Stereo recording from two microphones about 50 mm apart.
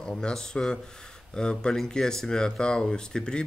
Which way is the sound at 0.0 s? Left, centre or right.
Centre.